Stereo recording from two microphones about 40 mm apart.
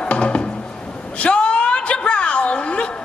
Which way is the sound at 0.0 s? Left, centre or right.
Left.